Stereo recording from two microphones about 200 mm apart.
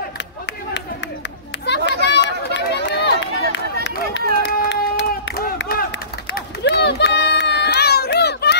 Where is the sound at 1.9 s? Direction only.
60° left (ahead or behind).